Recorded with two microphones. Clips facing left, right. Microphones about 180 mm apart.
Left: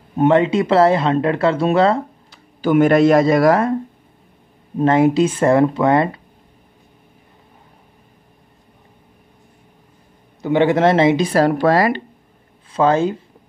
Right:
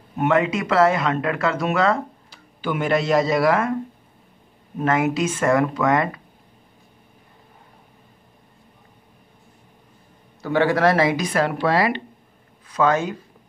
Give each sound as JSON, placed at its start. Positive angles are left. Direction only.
{"t": 0.2, "sound": "speech", "side_deg": 30}
{"t": 2.6, "sound": "a man's voice", "side_deg": 50}
{"t": 4.7, "sound": "speech", "side_deg": 30}
{"t": 10.4, "sound": "speech", "side_deg": 20}
{"t": 12.7, "sound": "speech", "side_deg": 30}